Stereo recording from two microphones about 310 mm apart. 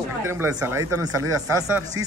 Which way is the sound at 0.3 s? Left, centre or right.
Centre.